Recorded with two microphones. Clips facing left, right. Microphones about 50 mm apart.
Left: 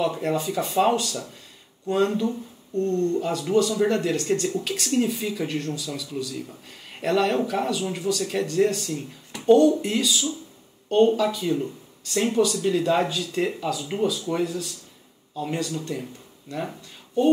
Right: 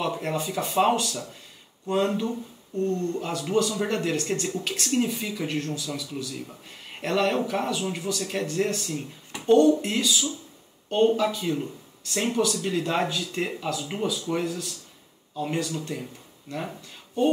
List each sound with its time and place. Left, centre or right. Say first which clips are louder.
0.2 s speech: left 3 dB; centre
3.8 s speech: left 4 dB; centre
5.6 s speech: even; centre
5.9 s speech: left 2 dB; centre
9.5 s speech: left 2 dB; centre